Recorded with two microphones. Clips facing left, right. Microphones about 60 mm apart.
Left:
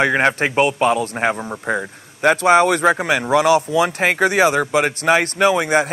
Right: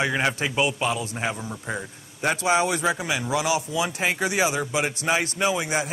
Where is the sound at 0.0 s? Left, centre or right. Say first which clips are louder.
Left 8 dB; left.